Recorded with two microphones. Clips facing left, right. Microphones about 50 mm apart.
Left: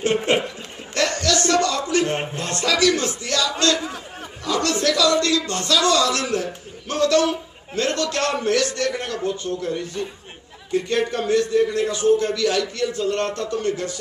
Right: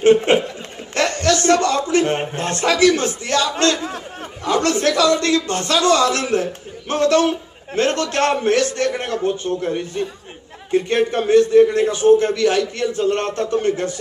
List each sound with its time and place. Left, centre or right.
0.3 s a man's voice: right
0.9 s a sound: right
4.5 s a man's voice: right